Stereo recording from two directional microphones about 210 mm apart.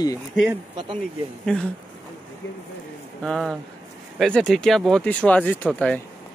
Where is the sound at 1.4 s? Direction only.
5° left (ahead or behind).